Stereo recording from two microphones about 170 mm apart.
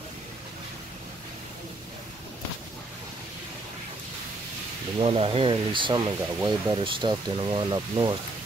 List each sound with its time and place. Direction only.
4.9 s speech: 30° right (ahead or behind)